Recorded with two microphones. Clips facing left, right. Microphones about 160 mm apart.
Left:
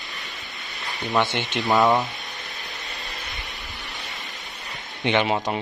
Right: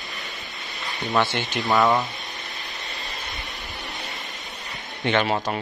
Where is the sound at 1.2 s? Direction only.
20° left (ahead or behind).